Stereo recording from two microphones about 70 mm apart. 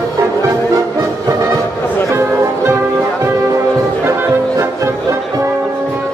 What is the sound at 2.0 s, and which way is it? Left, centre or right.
Music, right.